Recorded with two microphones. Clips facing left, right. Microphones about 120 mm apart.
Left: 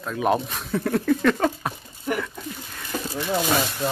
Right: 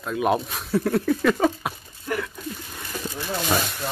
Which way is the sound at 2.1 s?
20° left (ahead or behind).